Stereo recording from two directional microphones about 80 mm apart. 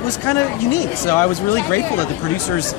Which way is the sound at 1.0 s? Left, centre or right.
Left.